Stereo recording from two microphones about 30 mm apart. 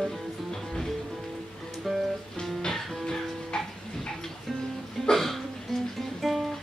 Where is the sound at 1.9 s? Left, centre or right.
Centre.